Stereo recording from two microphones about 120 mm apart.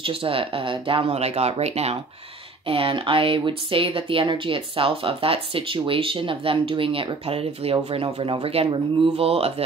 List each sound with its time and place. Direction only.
0.0 s speech: 50° right (ahead or behind)
2.6 s speech: 50° right (ahead or behind)